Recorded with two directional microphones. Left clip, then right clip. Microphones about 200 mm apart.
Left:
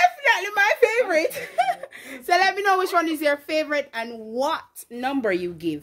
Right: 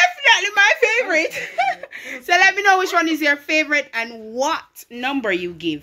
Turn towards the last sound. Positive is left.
turn(degrees=5)  # may be behind; listen again after turning